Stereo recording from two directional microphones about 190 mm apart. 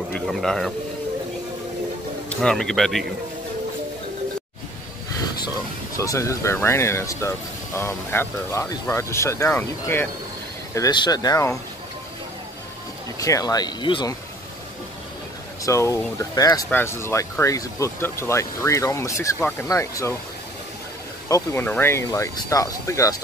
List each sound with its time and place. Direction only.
0.1 s speech: centre (ahead or behind)
2.2 s speech: 5° left (ahead or behind)
5.9 s speech: 15° left (ahead or behind)
13.2 s speech: 20° left (ahead or behind)
15.6 s speech: 15° left (ahead or behind)
21.3 s speech: 10° left (ahead or behind)